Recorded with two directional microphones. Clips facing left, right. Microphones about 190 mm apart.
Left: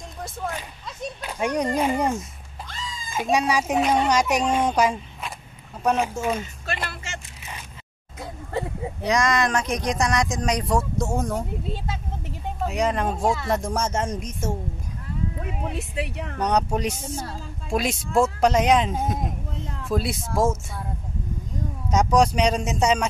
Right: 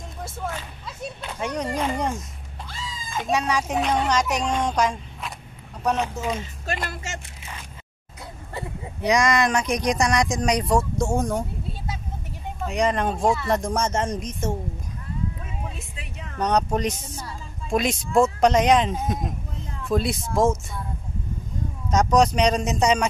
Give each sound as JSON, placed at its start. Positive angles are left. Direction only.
{"t": 1.2, "sound": "a sound", "side_deg": 10}
{"t": 1.8, "sound": "speech", "side_deg": 10}
{"t": 6.6, "sound": "speech", "side_deg": -45}
{"t": 9.2, "sound": "speech", "side_deg": 0}
{"t": 12.6, "sound": "speech", "side_deg": 5}
{"t": 15.4, "sound": "a sound", "side_deg": 70}
{"t": 16.3, "sound": "speech", "side_deg": 10}
{"t": 17.1, "sound": "speech", "side_deg": 50}
{"t": 17.6, "sound": "speech", "side_deg": 5}
{"t": 21.9, "sound": "speech", "side_deg": 10}